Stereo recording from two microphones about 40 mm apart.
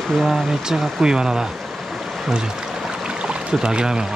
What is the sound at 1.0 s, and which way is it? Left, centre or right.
Speech, centre.